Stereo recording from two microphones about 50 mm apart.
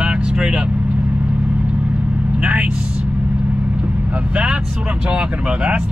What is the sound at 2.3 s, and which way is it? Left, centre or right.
Vehicle, right.